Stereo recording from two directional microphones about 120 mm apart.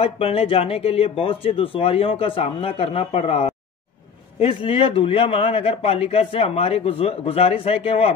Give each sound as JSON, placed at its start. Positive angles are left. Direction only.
{"t": 0.0, "sound": "speech", "side_deg": 55}